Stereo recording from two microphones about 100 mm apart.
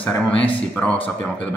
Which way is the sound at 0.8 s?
15° left (ahead or behind).